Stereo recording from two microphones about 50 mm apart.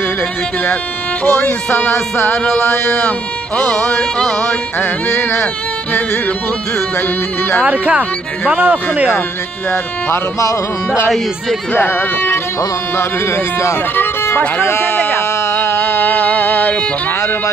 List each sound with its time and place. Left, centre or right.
1.2 s music: left
2.6 s speech: left
3.5 s music: left
4.0 s music: centre
4.7 s speech: left
7.6 s speech: right
9.7 s speech: left
11.7 s music: left
12.9 s speech: left
14.6 s speech: left
15.4 s music: left